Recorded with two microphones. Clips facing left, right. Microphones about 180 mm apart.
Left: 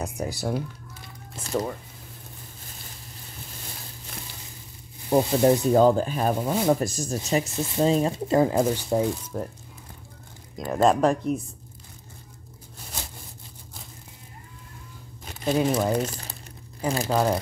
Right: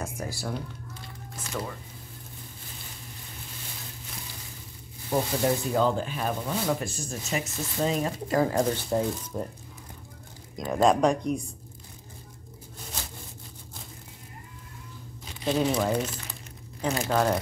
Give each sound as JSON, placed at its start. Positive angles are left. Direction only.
{"t": 0.0, "sound": "speech", "side_deg": 20}
{"t": 1.3, "sound": "speech", "side_deg": 35}
{"t": 5.1, "sound": "speech", "side_deg": 30}
{"t": 8.5, "sound": "speech", "side_deg": 10}
{"t": 9.3, "sound": "speech", "side_deg": -5}
{"t": 10.5, "sound": "speech", "side_deg": 0}
{"t": 15.4, "sound": "speech", "side_deg": 10}
{"t": 15.9, "sound": "speech", "side_deg": 40}
{"t": 17.1, "sound": "speech", "side_deg": 10}